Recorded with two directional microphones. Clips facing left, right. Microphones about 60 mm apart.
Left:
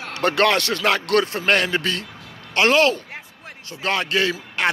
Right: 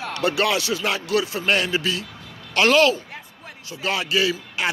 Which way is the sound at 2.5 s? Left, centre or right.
Left.